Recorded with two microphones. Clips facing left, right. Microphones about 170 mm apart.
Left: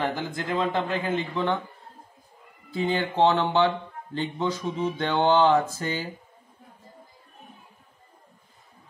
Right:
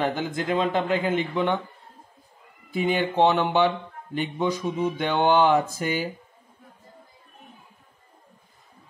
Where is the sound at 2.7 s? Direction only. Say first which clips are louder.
Right 2 dB; 15° right (ahead or behind).